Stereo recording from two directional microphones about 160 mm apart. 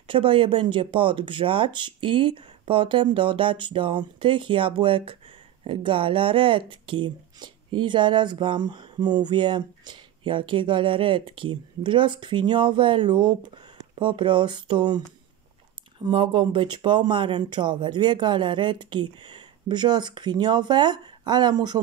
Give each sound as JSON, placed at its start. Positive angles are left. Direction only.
{"t": 0.1, "sound": "speech", "side_deg": -35}
{"t": 16.0, "sound": "speech", "side_deg": -30}